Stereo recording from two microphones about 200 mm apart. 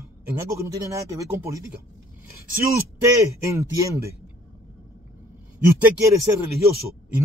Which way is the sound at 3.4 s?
15° right (ahead or behind).